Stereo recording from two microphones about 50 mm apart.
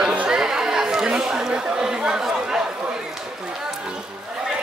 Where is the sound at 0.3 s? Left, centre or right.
Centre.